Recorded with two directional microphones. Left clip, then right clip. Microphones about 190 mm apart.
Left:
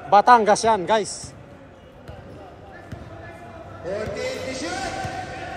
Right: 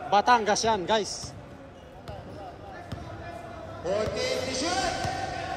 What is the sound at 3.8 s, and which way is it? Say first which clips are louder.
Music: even; 55° right (ahead or behind).